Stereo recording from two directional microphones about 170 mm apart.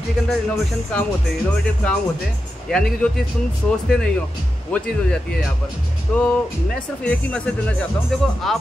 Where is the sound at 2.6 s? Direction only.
Centre (ahead or behind).